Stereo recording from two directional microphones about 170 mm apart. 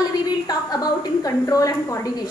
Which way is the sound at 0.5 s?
25° left (ahead or behind).